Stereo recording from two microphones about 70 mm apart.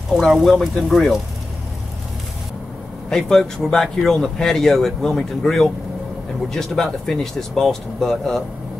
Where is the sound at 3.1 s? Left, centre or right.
Centre.